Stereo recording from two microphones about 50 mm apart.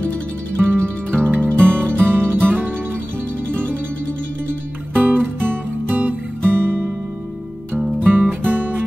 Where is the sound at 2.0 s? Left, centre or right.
Right.